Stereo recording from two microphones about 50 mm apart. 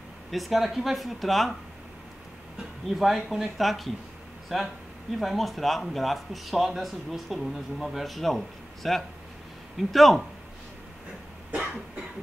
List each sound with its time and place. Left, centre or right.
0.3 s speech: centre
3.0 s speech: centre
11.5 s cough: right